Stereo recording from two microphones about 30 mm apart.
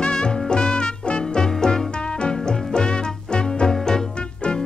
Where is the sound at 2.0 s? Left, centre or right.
Left.